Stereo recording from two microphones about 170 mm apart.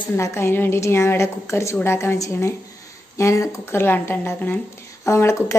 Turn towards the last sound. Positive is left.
turn(degrees=15)  # may be behind; listen again after turning